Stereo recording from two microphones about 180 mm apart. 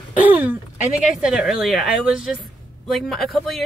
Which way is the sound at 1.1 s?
5° right (ahead or behind).